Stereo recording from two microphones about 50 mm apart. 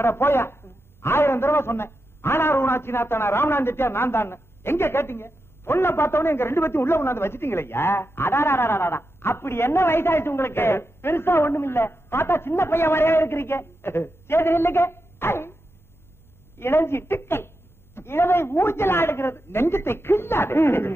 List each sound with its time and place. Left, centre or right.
0.0 s a man's voice: left
16.5 s a man's voice: left